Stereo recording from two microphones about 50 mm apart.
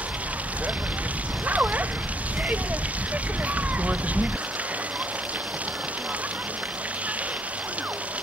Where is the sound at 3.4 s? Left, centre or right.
Right.